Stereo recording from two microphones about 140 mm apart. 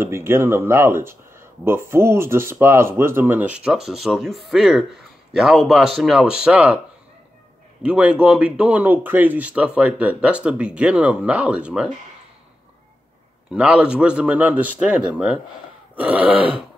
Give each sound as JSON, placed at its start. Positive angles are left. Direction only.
{"t": 0.0, "sound": "speech", "side_deg": -20}
{"t": 7.8, "sound": "speech", "side_deg": -10}
{"t": 13.5, "sound": "speech", "side_deg": -5}